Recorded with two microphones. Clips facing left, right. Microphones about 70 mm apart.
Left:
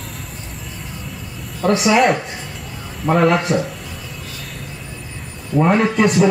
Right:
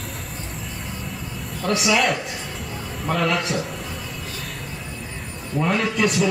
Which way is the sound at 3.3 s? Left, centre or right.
Centre.